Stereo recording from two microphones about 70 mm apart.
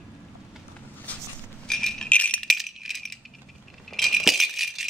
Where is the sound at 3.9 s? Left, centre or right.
Centre.